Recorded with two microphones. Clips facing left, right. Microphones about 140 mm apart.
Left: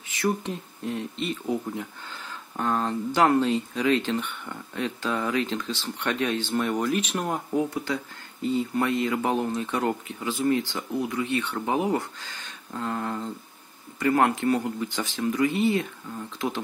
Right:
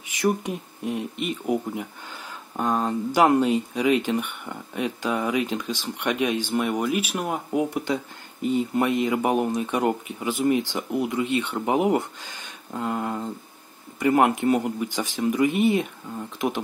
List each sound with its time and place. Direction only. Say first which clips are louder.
0.1 s speech: right 3 dB; 15° right (ahead or behind)
7.7 s speech: right 3 dB; 20° right (ahead or behind)